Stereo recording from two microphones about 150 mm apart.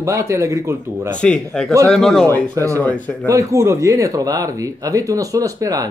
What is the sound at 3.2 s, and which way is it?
Speech, 20° right (ahead or behind).